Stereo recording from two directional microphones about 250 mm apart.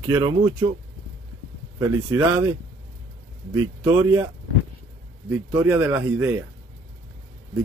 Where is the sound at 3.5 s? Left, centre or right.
Centre.